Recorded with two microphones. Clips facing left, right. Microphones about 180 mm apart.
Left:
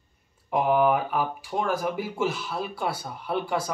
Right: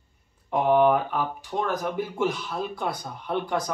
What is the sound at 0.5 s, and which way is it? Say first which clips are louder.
Speech: right 2 dB; 5° left (ahead or behind).